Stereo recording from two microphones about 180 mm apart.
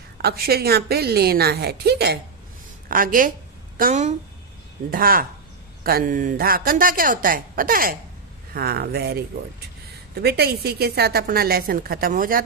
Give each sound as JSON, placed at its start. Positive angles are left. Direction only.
{"t": 0.2, "sound": "a woman's voice", "side_deg": -60}
{"t": 2.9, "sound": "a woman's voice", "side_deg": -50}